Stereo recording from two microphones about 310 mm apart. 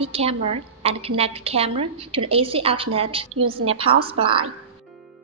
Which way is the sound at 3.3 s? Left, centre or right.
Right.